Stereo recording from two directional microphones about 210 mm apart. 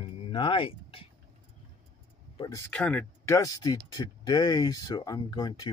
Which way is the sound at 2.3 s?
20° left (ahead or behind).